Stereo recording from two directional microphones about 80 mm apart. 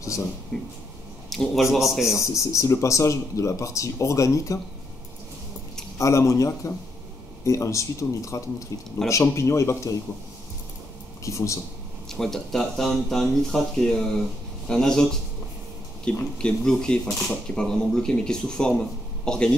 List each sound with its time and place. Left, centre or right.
0.5 s speech: centre
2.1 s speech: left
5.9 s speech: left
11.2 s speech: left
12.1 s speech: centre